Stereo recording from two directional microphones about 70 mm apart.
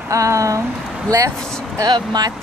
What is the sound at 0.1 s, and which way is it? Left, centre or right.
Speech, right.